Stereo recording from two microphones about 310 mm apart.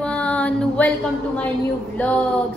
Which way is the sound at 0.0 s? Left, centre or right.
Centre.